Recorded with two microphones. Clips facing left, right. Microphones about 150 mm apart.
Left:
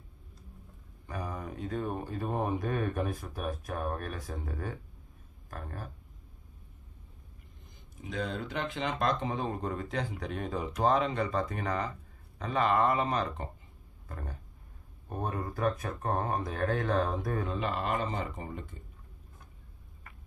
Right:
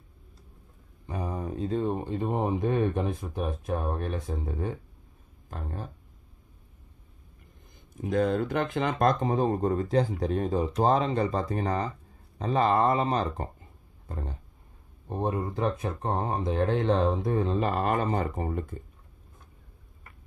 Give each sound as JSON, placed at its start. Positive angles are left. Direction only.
{"t": 1.0, "sound": "speech", "side_deg": -25}
{"t": 8.0, "sound": "speech", "side_deg": -50}
{"t": 14.0, "sound": "a sound", "side_deg": -25}
{"t": 15.0, "sound": "speech", "side_deg": -25}
{"t": 17.6, "sound": "speech", "side_deg": -45}